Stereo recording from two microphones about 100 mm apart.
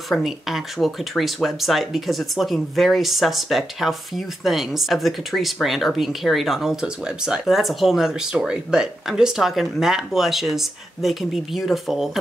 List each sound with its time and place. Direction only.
0.1 s speech: centre (ahead or behind)